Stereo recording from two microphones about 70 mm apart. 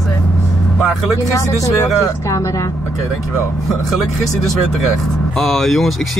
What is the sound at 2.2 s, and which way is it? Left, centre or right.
Speech, left.